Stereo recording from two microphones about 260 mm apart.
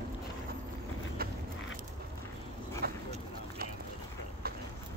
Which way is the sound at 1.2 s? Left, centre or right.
Right.